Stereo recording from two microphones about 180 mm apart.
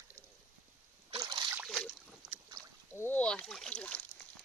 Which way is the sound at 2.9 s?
10° left (ahead or behind).